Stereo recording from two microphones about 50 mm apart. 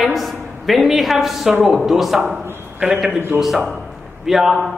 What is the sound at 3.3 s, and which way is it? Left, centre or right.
Speech, right.